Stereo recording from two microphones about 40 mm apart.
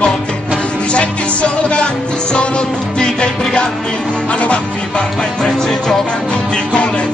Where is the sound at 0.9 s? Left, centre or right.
Left.